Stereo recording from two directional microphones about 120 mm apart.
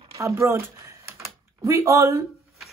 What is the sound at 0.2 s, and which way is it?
Speech, 25° right (ahead or behind).